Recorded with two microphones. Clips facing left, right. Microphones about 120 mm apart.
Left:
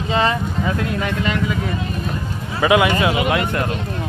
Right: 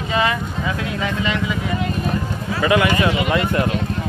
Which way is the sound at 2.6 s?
20° left (ahead or behind).